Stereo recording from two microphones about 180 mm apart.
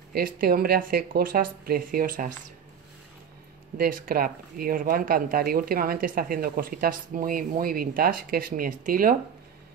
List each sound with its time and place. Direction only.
0.1 s speech: 55° right (ahead or behind)
3.7 s speech: 55° right (ahead or behind)